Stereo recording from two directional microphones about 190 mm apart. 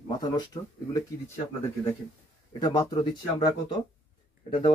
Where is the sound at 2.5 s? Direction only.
20° left (ahead or behind).